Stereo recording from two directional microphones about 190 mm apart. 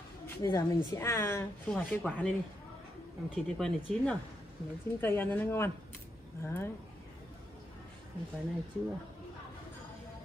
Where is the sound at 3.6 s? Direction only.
5° left (ahead or behind).